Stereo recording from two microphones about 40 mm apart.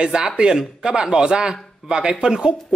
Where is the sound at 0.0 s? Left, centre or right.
Right.